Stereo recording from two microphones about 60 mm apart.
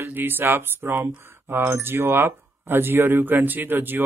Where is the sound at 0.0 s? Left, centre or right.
Right.